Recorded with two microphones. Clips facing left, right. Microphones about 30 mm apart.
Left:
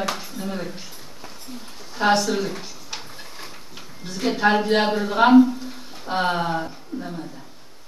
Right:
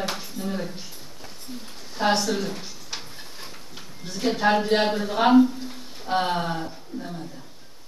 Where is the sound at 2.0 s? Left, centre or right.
Centre.